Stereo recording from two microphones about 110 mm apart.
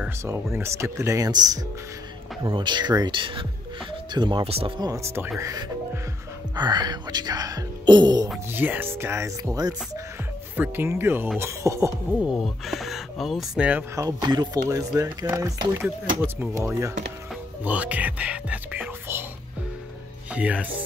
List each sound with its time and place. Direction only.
0.2 s speech: 25° right (ahead or behind); by 4.5 s 45° right (ahead or behind)
4.5 s speech: 60° right (ahead or behind)
4.7 s speech: 35° right (ahead or behind)
8.5 s speech: 20° right (ahead or behind); by 9.8 s 35° right (ahead or behind)
10.5 s speech: 15° right (ahead or behind)
12.2 s speech: 5° right (ahead or behind)
13.6 s speech: 10° right (ahead or behind)
13.9 s speech: 35° right (ahead or behind)
17.6 s speech: 15° right (ahead or behind)
20.3 s speech: 10° right (ahead or behind)